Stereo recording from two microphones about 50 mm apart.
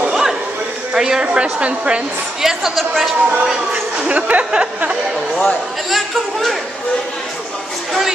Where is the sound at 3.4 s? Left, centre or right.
Centre.